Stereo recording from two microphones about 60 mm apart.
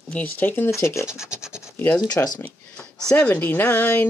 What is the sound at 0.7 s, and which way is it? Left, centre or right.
Speech, left.